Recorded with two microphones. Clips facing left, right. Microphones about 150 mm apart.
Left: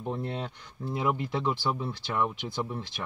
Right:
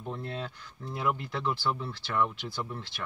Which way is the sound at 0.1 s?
20° left (ahead or behind).